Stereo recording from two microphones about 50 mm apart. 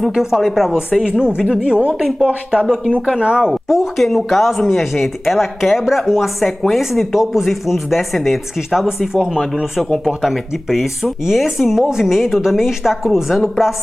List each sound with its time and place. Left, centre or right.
0.1 s speech: centre
2.2 s speech: centre
3.4 s speech: centre